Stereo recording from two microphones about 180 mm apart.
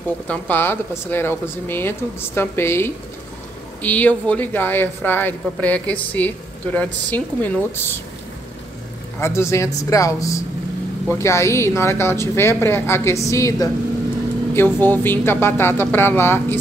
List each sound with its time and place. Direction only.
0.3 s speech: 10° left (ahead or behind)
9.2 s speech: 15° left (ahead or behind)